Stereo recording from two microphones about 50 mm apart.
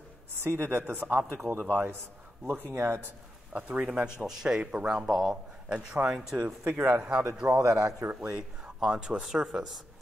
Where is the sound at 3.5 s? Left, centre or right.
Right.